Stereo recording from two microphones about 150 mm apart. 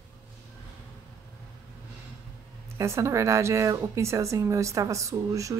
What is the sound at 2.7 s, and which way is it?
A woman's voice, 20° right (ahead or behind).